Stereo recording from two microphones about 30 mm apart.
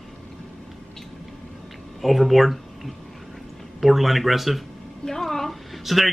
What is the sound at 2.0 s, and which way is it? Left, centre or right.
Speech, centre.